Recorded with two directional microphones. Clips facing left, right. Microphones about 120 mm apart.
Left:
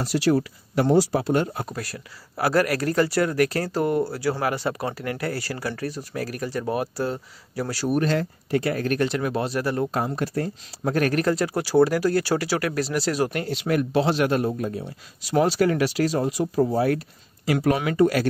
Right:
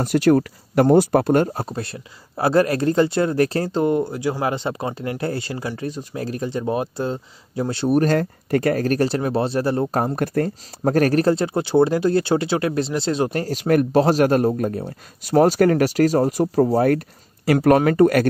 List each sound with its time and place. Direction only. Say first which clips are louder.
0.0 s speech: right 5 dB; 50° right (ahead or behind)
1.6 s speech: right 4 dB; 25° right (ahead or behind)
8.0 s speech: right 4 dB; 50° right (ahead or behind); by 9.8 s 30° right (ahead or behind)
9.8 s speech: right 4 dB; 45° right (ahead or behind)
10.8 s speech: right 5 dB; 40° right (ahead or behind)
13.4 s speech: right 5 dB; 45° right (ahead or behind)